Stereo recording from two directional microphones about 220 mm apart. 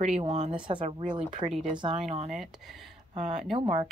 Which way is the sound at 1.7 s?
25° right (ahead or behind).